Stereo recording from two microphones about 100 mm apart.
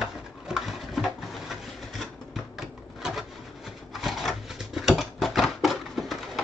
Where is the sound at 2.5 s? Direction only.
5° right (ahead or behind).